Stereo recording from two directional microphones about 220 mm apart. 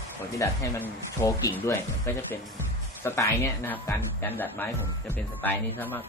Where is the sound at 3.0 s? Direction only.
10° left (ahead or behind).